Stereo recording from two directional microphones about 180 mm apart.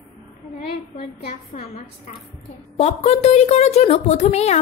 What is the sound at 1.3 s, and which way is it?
A woman's voice, 40° left (ahead or behind).